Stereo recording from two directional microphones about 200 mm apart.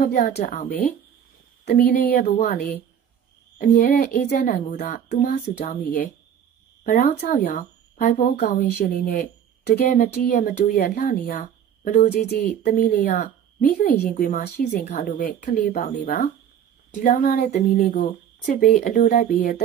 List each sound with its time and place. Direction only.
0.0 s a woman's voice: 40° left (ahead or behind)
1.6 s speech: 50° left (ahead or behind)
13.1 s a sound: 40° left (ahead or behind)
14.1 s speech: 45° left (ahead or behind)